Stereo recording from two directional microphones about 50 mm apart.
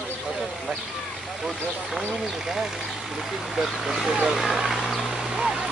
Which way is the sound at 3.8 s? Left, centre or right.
Centre.